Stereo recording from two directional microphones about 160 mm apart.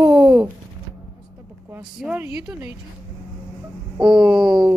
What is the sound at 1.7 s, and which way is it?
Speech, 10° right (ahead or behind).